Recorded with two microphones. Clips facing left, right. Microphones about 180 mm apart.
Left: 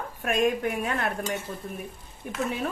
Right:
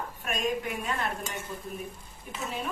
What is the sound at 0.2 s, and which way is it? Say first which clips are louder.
Speech: left 7 dB; 55° left (ahead or behind).